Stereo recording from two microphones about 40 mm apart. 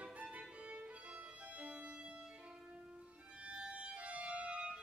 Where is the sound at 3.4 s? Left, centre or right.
Right.